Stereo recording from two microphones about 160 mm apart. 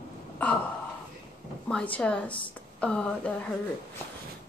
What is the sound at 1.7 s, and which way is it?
A woman's voice, 5° left (ahead or behind).